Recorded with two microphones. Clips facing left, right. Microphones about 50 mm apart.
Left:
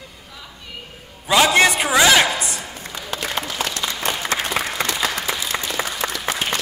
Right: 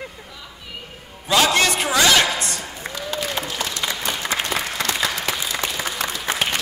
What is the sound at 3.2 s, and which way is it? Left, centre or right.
Applause, left.